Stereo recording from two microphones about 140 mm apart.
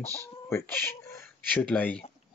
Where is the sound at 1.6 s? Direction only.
10° left (ahead or behind).